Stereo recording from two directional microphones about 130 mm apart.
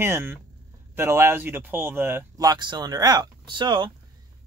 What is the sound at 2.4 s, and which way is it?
Speech, 35° right (ahead or behind).